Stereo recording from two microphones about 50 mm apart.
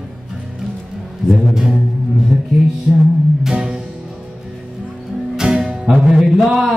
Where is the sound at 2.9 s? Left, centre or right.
Centre.